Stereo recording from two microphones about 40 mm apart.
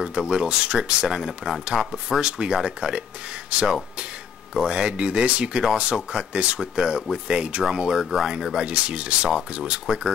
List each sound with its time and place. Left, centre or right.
0.3 s speech: right
1.0 s speech: centre
2.2 s speech: right
2.5 s speech: centre
3.4 s speech: right
7.6 s speech: centre
8.0 s speech: centre
8.3 s speech: centre
8.6 s speech: right